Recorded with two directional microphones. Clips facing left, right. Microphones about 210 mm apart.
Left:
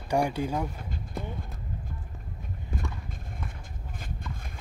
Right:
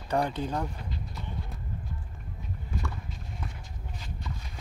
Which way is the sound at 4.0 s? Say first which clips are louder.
Left 1 dB; 55° left (ahead or behind).